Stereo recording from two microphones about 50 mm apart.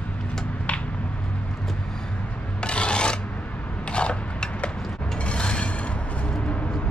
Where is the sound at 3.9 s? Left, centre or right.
Left.